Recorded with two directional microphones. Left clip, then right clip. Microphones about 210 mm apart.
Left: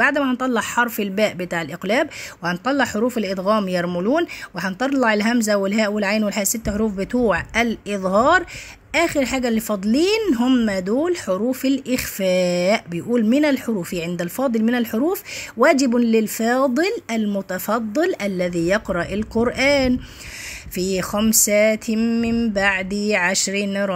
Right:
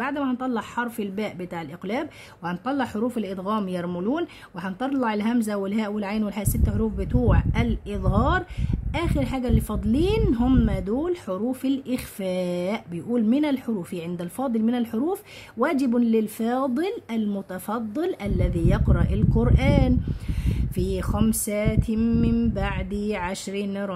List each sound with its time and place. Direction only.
0.0 s speech: 15° left (ahead or behind)